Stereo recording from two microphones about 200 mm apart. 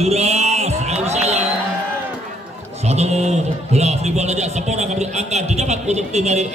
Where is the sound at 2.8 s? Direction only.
30° right (ahead or behind).